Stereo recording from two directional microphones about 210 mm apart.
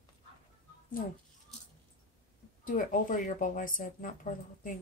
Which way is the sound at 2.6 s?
40° left (ahead or behind).